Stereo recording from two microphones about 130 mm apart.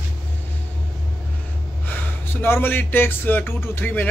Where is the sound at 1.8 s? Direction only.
15° left (ahead or behind).